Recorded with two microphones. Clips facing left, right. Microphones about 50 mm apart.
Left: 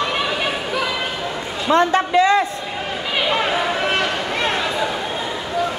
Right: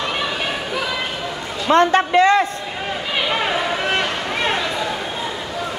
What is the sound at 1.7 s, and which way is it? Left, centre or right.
Speech, right.